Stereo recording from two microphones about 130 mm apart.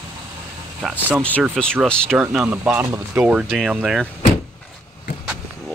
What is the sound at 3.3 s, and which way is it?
Speech, 5° right (ahead or behind).